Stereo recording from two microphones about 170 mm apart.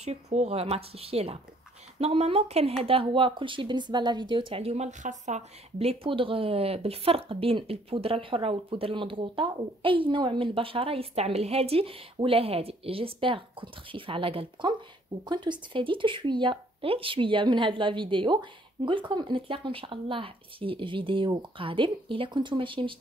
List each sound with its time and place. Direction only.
0.0 s speech: 40° right (ahead or behind)